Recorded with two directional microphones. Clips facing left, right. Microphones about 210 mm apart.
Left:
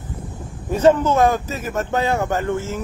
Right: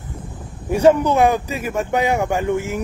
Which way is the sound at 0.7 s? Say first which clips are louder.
Right 1 dB; 15° right (ahead or behind).